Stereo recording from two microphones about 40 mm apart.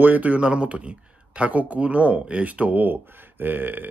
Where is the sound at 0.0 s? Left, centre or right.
Right.